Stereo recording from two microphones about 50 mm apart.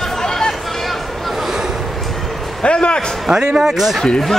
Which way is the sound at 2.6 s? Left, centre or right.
Left.